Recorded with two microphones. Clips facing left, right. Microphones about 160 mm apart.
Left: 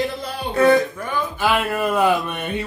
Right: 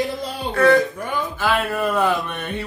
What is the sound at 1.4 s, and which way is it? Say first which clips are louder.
Speech: left 1 dB; 15° left (ahead or behind).